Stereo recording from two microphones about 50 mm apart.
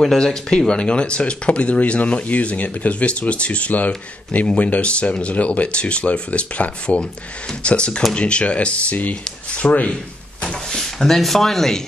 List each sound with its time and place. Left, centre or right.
0.0 s speech: centre; by 9.9 s left
10.4 s speech: centre